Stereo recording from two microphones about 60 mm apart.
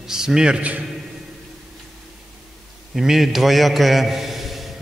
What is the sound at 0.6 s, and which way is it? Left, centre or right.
Speech, right.